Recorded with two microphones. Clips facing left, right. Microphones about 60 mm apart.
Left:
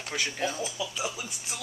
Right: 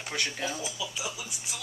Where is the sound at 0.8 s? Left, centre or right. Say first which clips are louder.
Left 3 dB; left.